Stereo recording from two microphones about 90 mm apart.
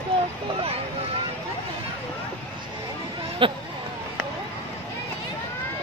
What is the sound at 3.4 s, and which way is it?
Speech, 75° right (ahead or behind).